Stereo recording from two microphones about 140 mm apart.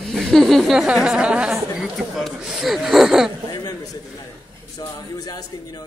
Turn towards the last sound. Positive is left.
turn(degrees=25)  # may be behind; listen again after turning